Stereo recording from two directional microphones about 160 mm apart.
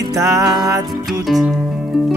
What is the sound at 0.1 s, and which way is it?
Music, 20° right (ahead or behind).